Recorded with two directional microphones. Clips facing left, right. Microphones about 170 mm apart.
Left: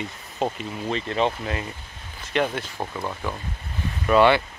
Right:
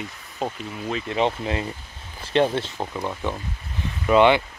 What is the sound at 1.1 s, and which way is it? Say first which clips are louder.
Speech: right 2 dB; 20° right (ahead or behind).